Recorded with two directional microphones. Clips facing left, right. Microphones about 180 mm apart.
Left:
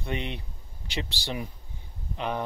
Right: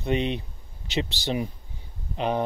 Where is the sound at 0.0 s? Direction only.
20° right (ahead or behind).